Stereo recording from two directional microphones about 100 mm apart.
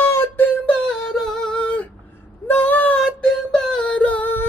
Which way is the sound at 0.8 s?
5° left (ahead or behind).